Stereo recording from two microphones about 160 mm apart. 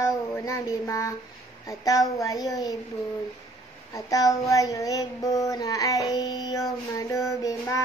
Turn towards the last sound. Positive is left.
turn(degrees=20)  # may be behind; listen again after turning